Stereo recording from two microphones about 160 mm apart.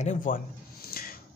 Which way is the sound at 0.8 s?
70° left (ahead or behind).